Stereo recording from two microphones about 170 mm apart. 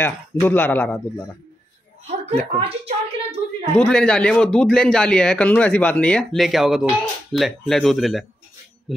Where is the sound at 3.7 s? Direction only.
5° left (ahead or behind).